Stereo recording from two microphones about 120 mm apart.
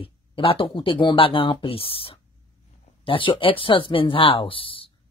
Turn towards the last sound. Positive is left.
turn(degrees=45)  # may be behind; listen again after turning